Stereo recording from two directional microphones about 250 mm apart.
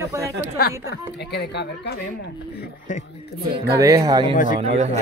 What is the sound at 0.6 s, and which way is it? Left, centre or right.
Speech, left.